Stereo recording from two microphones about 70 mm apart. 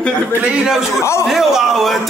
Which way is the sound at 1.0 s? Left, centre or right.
Left.